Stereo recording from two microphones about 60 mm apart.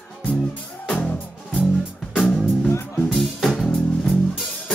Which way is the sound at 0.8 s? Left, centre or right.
Centre.